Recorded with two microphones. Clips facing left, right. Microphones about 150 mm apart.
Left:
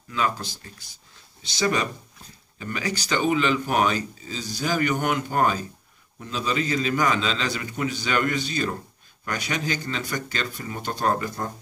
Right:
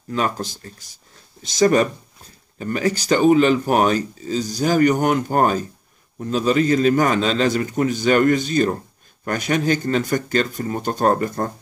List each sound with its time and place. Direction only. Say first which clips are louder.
0.1 s speech: right 4 dB; 45° right (ahead or behind)